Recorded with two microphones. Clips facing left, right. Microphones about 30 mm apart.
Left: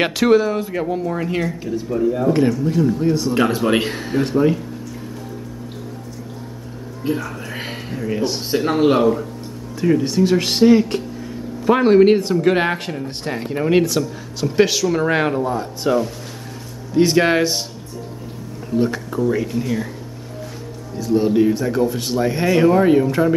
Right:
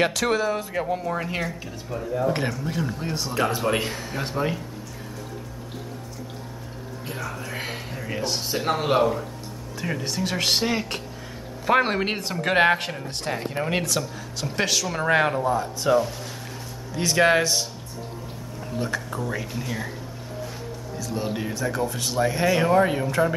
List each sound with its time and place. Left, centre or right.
0.0 s speech: left
0.3 s speech: centre
2.3 s speech: centre
3.7 s a man's voice: left
4.2 s speech: centre
7.9 s speech: centre
8.5 s speech: centre
15.5 s speech: centre
16.9 s speech: centre
18.7 s speech: centre
21.0 s speech: centre
21.3 s speech: centre